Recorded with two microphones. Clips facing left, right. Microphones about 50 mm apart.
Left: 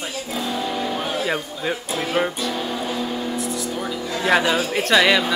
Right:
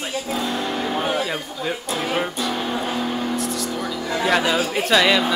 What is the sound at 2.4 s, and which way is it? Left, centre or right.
Music, right.